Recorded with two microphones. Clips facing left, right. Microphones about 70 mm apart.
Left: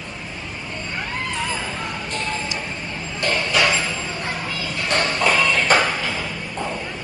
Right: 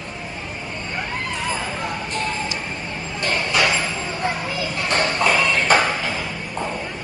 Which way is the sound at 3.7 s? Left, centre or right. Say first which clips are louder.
Even; centre.